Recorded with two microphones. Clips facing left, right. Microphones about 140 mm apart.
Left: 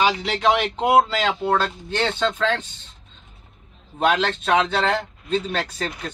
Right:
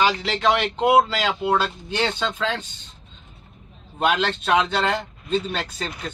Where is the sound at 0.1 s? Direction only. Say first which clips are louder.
Left 1 dB; 5° left (ahead or behind).